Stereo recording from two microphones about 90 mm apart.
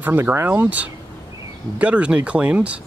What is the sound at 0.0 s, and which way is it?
Speech, 25° right (ahead or behind).